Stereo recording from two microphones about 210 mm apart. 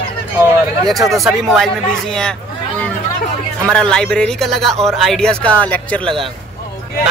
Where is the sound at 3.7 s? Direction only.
5° left (ahead or behind).